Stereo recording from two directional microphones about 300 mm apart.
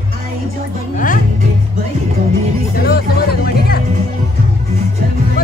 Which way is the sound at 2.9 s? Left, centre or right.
Left.